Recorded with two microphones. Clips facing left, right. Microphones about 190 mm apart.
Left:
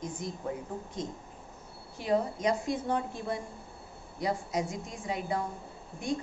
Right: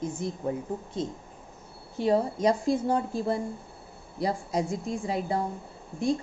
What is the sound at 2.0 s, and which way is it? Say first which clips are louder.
A woman's voice: right 5 dB; 35° right (ahead or behind).